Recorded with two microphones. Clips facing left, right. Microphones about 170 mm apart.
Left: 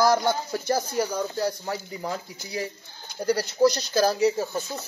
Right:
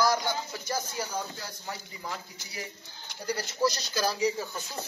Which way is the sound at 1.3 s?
40° left (ahead or behind).